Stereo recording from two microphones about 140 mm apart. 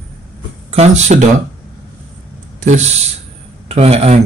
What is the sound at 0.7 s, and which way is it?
Speech, 50° right (ahead or behind).